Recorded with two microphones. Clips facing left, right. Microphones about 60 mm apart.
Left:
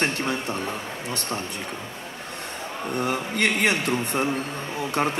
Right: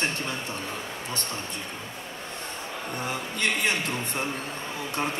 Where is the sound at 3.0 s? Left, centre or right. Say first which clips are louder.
Left 5 dB; left.